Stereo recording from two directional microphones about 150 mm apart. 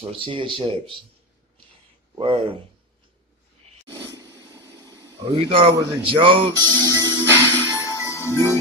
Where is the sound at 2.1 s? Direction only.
35° right (ahead or behind).